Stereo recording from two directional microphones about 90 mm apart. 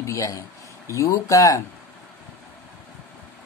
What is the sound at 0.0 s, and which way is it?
A woman's voice, 35° left (ahead or behind).